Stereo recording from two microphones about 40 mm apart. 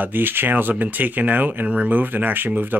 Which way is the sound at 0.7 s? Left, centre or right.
Right.